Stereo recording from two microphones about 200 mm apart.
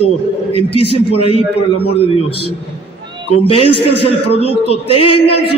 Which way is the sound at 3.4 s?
30° left (ahead or behind).